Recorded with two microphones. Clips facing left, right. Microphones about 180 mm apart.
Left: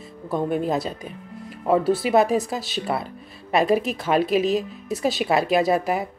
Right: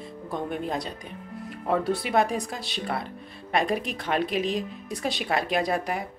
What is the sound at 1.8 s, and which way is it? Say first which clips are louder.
Speech: left 5 dB; 5° left (ahead or behind).